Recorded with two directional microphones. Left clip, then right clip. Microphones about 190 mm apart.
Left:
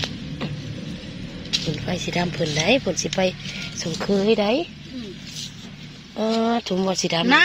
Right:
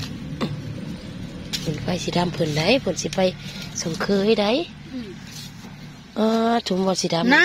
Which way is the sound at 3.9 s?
25° right (ahead or behind).